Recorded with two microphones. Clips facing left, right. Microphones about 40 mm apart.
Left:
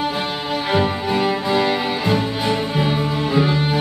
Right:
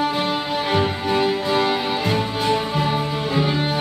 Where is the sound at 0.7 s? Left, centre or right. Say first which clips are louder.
Left 3 dB; centre.